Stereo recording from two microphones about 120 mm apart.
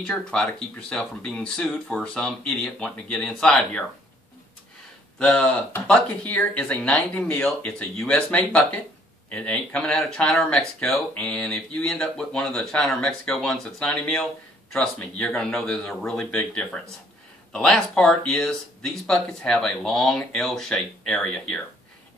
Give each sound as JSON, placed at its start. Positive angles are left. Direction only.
{"t": 0.0, "sound": "speech", "side_deg": 10}
{"t": 5.2, "sound": "speech", "side_deg": 10}